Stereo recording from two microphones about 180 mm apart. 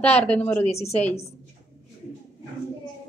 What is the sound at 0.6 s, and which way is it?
Speech, 35° left (ahead or behind).